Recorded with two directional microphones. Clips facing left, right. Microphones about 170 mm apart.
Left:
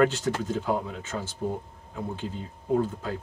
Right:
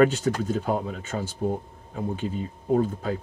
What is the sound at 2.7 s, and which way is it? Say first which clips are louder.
Speech: right 3 dB; 55° right (ahead or behind).